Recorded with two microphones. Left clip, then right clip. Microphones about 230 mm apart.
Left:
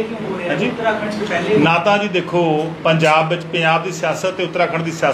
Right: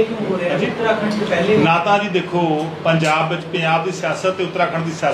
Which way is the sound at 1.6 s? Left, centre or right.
Left.